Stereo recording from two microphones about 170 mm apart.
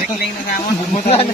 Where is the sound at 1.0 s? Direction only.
35° left (ahead or behind).